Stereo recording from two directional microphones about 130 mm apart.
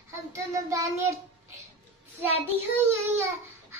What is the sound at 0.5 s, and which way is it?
Speech, 25° right (ahead or behind).